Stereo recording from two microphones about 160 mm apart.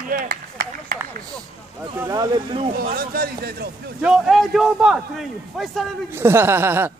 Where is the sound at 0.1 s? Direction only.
60° right (ahead or behind).